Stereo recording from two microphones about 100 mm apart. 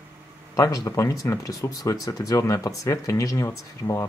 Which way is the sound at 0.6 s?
35° left (ahead or behind).